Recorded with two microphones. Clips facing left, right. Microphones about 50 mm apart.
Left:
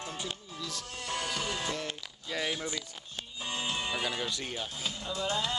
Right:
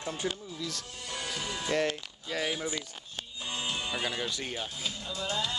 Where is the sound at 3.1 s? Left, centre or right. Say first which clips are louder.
Even; centre.